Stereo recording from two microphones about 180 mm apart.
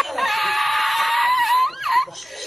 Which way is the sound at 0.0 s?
Centre (ahead or behind).